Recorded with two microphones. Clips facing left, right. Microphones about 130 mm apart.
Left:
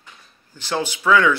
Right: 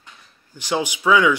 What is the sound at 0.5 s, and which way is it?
Speech, 15° right (ahead or behind).